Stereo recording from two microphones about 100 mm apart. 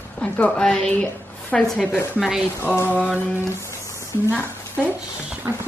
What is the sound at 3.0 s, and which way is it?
Speech, 15° right (ahead or behind).